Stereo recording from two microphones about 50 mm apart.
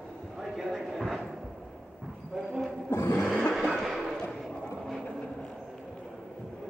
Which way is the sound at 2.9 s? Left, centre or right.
Left.